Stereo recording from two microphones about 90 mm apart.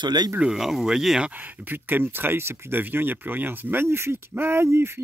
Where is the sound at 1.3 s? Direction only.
20° right (ahead or behind).